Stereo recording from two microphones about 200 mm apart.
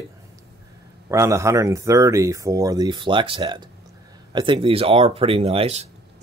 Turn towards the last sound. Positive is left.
turn(degrees=-30)  # may be behind; listen again after turning